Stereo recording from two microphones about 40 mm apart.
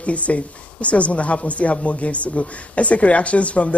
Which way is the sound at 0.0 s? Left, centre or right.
Left.